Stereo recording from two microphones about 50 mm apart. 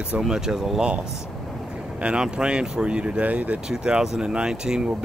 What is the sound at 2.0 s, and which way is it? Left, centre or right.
Speech, right.